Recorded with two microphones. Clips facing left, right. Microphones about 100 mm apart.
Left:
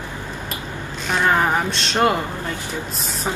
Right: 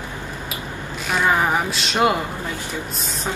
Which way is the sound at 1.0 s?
5° right (ahead or behind).